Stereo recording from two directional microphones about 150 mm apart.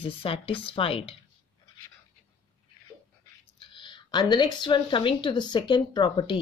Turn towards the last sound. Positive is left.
turn(degrees=30)  # may be behind; listen again after turning